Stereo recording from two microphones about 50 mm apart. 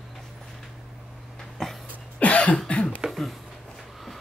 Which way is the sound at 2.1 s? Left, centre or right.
Left.